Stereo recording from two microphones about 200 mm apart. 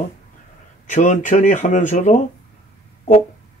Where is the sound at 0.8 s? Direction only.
40° left (ahead or behind).